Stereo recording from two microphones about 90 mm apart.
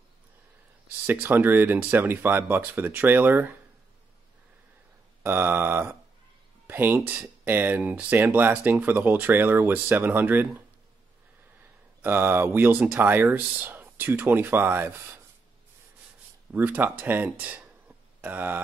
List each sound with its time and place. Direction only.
1.0 s speech: 20° right (ahead or behind)
5.2 s mantra: 25° right (ahead or behind)
6.7 s a sound: 20° right (ahead or behind)
7.1 s speech: 20° right (ahead or behind)
12.0 s speech: 20° right (ahead or behind)
16.5 s speech: 20° right (ahead or behind)